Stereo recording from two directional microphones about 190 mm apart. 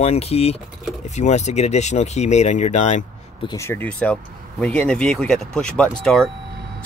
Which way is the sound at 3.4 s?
15° left (ahead or behind).